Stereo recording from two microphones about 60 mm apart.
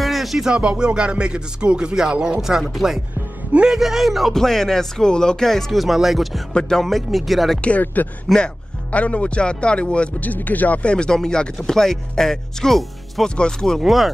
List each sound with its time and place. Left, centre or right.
0.0 s music: centre
2.7 s speech: centre
7.8 s speech: left; by 13.7 s centre
13.7 s speech: centre